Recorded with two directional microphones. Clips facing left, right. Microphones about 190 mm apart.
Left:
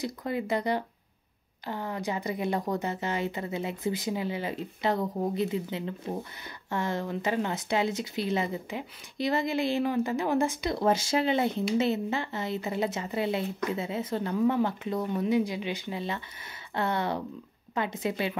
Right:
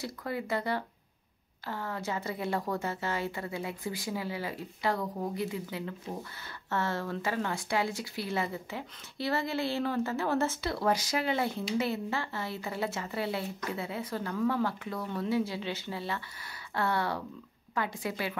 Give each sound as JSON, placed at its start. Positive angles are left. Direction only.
{"t": 0.0, "sound": "speech", "side_deg": 20}